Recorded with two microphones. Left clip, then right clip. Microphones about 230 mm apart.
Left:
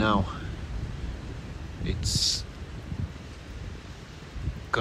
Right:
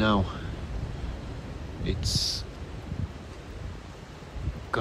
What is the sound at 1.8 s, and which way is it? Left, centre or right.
Speech, centre.